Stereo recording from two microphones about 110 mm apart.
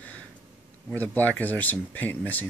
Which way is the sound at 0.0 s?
15° left (ahead or behind).